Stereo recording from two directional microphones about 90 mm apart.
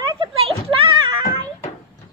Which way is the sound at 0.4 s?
80° right.